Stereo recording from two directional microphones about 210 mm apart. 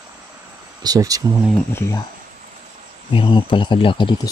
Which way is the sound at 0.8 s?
15° right (ahead or behind).